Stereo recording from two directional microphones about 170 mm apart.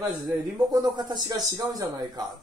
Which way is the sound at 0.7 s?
25° right (ahead or behind).